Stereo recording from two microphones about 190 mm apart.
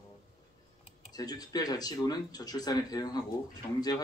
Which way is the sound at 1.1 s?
20° left (ahead or behind).